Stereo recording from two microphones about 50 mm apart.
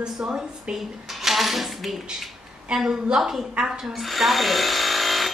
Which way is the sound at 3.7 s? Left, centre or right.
Centre.